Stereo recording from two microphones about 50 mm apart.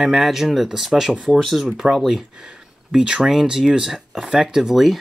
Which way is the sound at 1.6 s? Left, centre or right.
Centre.